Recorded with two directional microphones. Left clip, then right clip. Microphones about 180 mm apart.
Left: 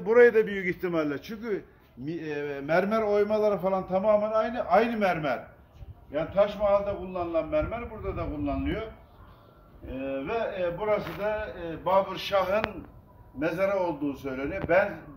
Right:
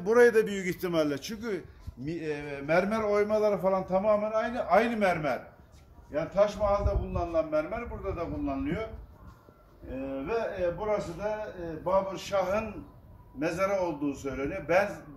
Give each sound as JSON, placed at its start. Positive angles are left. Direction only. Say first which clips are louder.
{"t": 0.0, "sound": "a man's voice", "louder": "left 2 dB", "side_deg": -75}
{"t": 2.0, "sound": "a man's voice", "louder": "left 2 dB", "side_deg": -45}
{"t": 6.1, "sound": "a man's voice", "louder": "left 1 dB", "side_deg": -10}
{"t": 9.9, "sound": "a man's voice", "louder": "left 2 dB", "side_deg": -20}